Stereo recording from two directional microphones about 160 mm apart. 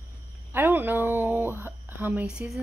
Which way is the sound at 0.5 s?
15° right (ahead or behind).